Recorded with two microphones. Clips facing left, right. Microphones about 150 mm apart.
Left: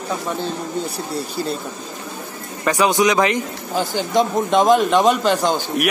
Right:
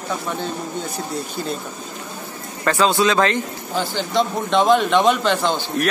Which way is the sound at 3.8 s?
45° left (ahead or behind).